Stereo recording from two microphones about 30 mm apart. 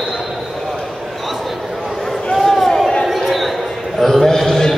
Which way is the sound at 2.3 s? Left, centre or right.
Centre.